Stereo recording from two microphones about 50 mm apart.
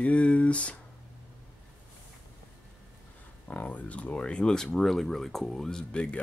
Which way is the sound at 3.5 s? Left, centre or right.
Left.